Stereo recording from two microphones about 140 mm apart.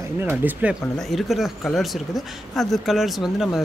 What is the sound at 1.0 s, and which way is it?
Speech, centre (ahead or behind).